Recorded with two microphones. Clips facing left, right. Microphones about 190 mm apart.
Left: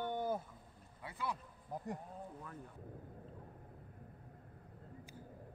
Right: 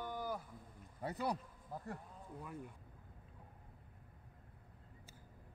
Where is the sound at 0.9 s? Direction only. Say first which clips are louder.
Right 4 dB; 40° right (ahead or behind).